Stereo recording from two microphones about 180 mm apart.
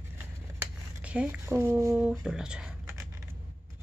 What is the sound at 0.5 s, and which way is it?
Speech, 5° right (ahead or behind).